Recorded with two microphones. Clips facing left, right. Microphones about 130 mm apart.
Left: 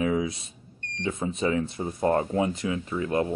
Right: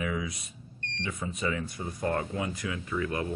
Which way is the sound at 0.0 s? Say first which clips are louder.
Left 7 dB; 30° left (ahead or behind).